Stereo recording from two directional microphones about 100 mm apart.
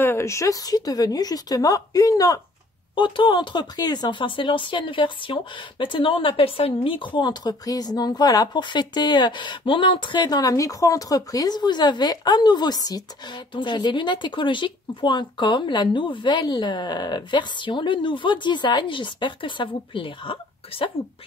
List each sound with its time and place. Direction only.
0.0 s a woman's voice: 25° left (ahead or behind)
3.0 s speech: 50° left (ahead or behind)
7.2 s a woman's voice: 45° left (ahead or behind); by 20.9 s 60° left (ahead or behind)